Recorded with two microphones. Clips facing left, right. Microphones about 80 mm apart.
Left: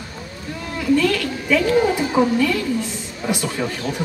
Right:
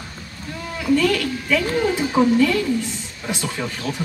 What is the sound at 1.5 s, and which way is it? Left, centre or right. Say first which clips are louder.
A woman's voice: left 4 dB; centre.